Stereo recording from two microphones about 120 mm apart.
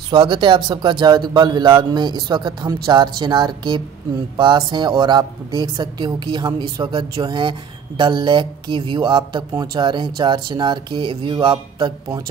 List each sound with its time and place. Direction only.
0.1 s speech: 40° right (ahead or behind)